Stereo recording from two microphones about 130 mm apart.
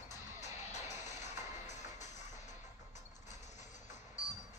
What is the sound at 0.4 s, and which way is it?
Music, 60° left (ahead or behind).